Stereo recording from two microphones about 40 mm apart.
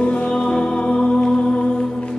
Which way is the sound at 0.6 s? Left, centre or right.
Left.